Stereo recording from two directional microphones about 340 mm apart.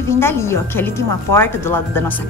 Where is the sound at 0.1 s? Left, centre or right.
Centre.